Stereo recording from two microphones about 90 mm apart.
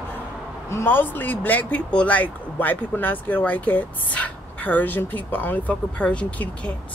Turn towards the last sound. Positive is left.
turn(degrees=15)  # may be behind; listen again after turning